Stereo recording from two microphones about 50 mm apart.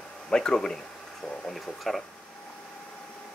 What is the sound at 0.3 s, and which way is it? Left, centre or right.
Speech, centre.